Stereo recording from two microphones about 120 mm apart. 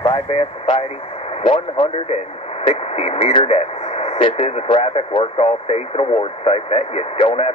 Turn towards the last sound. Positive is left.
turn(degrees=55)  # may be behind; listen again after turning